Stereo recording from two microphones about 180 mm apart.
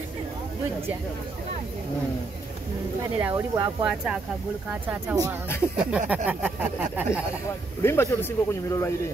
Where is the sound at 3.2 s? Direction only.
10° right (ahead or behind).